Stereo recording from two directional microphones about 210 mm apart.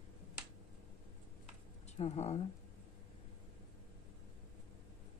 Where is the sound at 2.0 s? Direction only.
30° left (ahead or behind).